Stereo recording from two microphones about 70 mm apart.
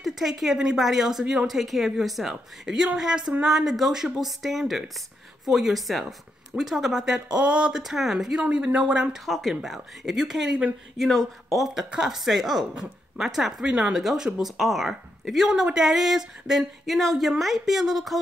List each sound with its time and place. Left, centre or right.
0.0 s a woman's voice: centre
7.8 s a woman's voice: centre
8.4 s speech: centre
9.2 s a woman's voice: centre